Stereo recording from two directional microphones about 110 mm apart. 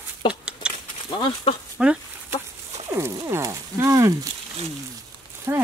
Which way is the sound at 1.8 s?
10° right (ahead or behind).